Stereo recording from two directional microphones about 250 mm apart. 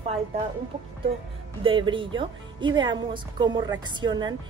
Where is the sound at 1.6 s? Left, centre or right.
Centre.